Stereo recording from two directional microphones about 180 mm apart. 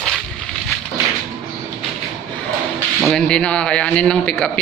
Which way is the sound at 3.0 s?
5° left (ahead or behind).